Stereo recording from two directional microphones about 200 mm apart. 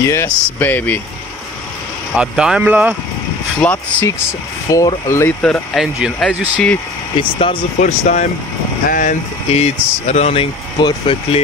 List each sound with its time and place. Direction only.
0.0 s speech: 15° left (ahead or behind)
2.1 s speech: 5° right (ahead or behind)
3.6 s speech: 10° left (ahead or behind)
7.2 s speech: 25° left (ahead or behind)
8.0 s speech: 40° left (ahead or behind)